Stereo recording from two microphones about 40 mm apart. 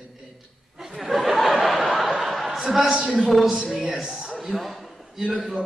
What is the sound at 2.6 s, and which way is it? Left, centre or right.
A man's voice, centre.